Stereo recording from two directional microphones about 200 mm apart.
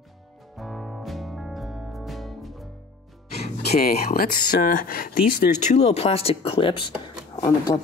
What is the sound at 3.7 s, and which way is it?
Speech, 50° left (ahead or behind).